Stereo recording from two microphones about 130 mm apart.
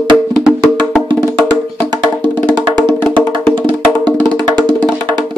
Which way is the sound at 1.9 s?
35° right (ahead or behind).